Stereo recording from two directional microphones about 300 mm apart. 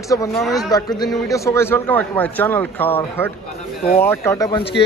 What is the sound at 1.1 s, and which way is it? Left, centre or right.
A man's voice, centre.